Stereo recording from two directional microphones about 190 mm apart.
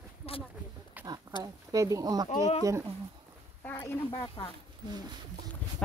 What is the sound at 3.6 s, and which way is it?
Speech, 10° left (ahead or behind).